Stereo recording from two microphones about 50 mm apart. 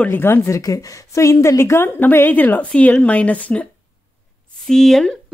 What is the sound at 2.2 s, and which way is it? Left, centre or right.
Speech, left.